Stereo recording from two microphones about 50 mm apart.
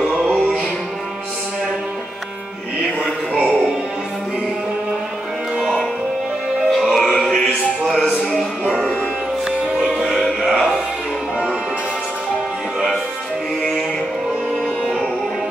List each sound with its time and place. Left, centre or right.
3.0 s music: centre
5.6 s music: centre
9.8 s music: centre
10.0 s music: centre
10.5 s music: centre